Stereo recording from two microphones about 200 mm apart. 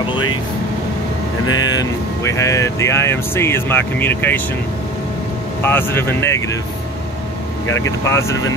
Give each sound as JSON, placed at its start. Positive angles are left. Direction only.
{"t": 1.5, "sound": "speech", "side_deg": 20}
{"t": 5.6, "sound": "speech", "side_deg": 10}
{"t": 8.0, "sound": "speech", "side_deg": 15}